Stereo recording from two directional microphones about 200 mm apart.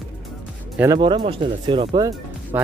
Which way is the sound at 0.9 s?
25° right (ahead or behind).